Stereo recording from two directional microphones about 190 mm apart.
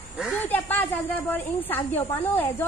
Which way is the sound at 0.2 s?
5° left (ahead or behind).